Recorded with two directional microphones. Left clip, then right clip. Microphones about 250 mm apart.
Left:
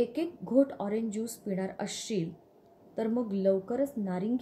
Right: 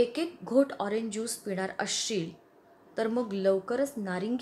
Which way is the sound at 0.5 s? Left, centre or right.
Centre.